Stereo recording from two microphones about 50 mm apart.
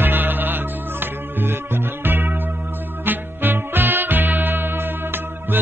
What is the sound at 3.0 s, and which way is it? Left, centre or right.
Music, right.